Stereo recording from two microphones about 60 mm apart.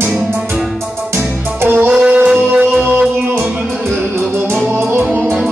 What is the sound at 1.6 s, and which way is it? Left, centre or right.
Music, right.